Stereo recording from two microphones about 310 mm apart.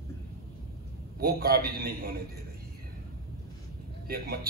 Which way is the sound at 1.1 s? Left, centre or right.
Right.